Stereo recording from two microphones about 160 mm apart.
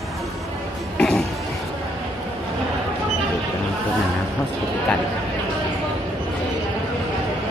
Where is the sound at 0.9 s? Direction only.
5° left (ahead or behind).